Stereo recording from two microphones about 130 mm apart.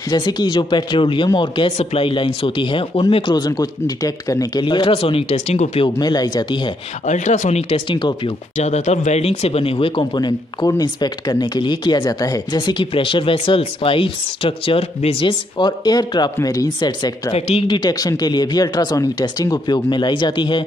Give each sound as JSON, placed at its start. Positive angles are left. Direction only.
{"t": 0.1, "sound": "speech", "side_deg": 30}
{"t": 5.9, "sound": "speech", "side_deg": 30}
{"t": 7.1, "sound": "speech", "side_deg": 65}
{"t": 7.9, "sound": "speech", "side_deg": 35}
{"t": 8.5, "sound": "speech", "side_deg": 60}
{"t": 17.3, "sound": "speech", "side_deg": 50}
{"t": 17.6, "sound": "speech", "side_deg": 30}